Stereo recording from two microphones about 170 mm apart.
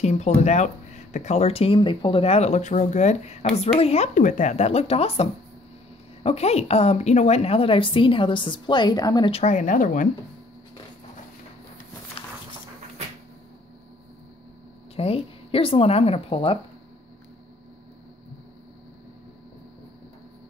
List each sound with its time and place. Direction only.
0.0 s speech: 40° left (ahead or behind); by 9.4 s 25° left (ahead or behind)
9.4 s speech: 45° left (ahead or behind)
15.0 s speech: 35° left (ahead or behind)